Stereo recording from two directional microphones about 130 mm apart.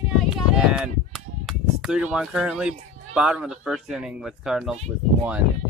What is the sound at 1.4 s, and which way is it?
Speech, 5° right (ahead or behind).